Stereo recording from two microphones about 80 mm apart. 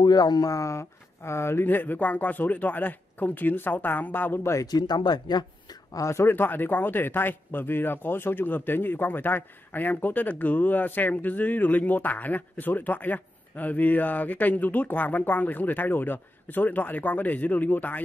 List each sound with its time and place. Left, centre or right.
0.0 s a man's voice: left
4.6 s speech: left
5.9 s a man's voice: left